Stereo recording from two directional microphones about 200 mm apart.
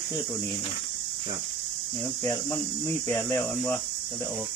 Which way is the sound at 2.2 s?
10° left (ahead or behind).